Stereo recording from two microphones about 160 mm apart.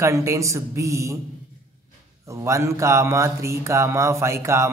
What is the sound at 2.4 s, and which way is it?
A man's voice, 20° right (ahead or behind).